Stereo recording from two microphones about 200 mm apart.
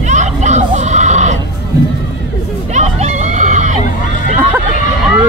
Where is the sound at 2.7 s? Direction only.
35° right (ahead or behind).